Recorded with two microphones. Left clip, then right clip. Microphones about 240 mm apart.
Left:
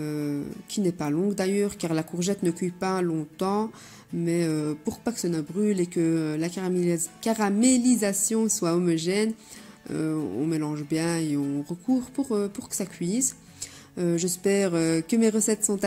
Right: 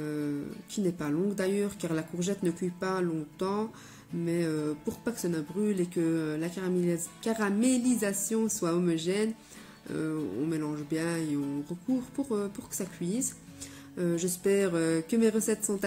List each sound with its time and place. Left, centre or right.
0.0 s speech: left